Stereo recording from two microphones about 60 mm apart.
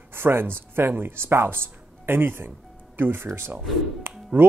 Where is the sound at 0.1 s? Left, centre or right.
Right.